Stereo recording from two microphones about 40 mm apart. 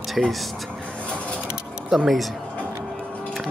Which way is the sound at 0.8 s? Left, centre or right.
Left.